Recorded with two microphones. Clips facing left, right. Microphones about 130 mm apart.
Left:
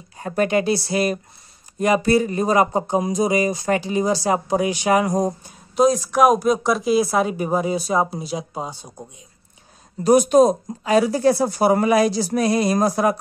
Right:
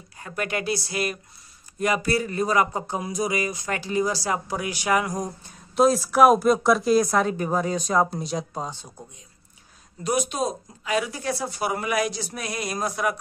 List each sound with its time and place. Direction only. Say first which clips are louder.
0.2 s speech: left 9 dB; 30° left (ahead or behind)
5.8 s speech: left 1 dB; 5° right (ahead or behind)
10.0 s speech: left 12 dB; 40° left (ahead or behind)